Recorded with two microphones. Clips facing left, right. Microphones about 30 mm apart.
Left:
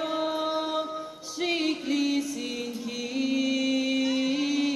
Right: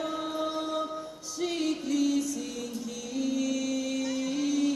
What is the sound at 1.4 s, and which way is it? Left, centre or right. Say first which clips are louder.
Music: left 3 dB; left.